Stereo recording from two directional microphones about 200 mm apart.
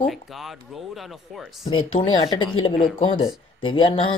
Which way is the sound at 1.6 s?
25° left (ahead or behind).